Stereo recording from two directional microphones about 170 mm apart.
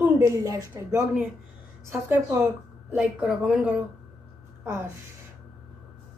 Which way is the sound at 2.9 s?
5° right (ahead or behind).